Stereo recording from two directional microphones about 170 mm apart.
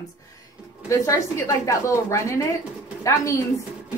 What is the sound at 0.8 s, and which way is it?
Speech, 15° left (ahead or behind).